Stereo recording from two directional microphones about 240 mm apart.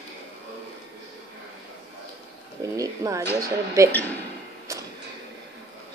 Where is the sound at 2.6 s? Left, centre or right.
Centre.